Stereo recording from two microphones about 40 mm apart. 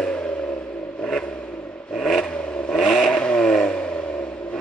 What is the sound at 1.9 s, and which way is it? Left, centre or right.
Vehicle, centre.